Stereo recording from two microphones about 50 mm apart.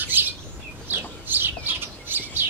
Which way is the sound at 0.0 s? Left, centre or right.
Right.